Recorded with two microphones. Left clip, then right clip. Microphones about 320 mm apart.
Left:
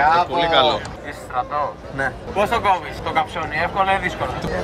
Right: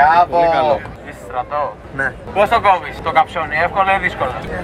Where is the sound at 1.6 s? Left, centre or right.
Centre.